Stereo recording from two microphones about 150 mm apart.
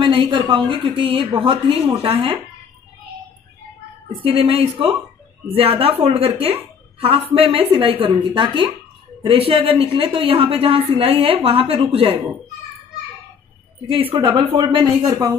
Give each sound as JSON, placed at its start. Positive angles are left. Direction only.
{"t": 0.0, "sound": "a woman's voice", "side_deg": -35}
{"t": 4.2, "sound": "a woman's voice", "side_deg": -40}
{"t": 13.8, "sound": "a woman's voice", "side_deg": -35}